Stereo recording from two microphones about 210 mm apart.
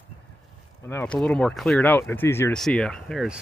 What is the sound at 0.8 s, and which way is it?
Speech, 10° left (ahead or behind).